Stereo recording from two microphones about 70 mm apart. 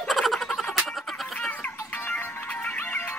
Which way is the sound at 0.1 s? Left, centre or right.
Centre.